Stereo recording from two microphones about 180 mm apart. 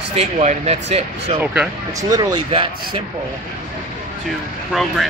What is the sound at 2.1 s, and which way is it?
Speech, 20° right (ahead or behind).